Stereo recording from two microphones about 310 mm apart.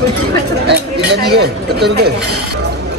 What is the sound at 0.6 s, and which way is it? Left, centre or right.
Speech, right.